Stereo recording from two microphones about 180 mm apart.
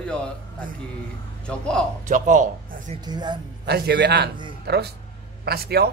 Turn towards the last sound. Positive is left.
turn(degrees=-60)  # may be behind; listen again after turning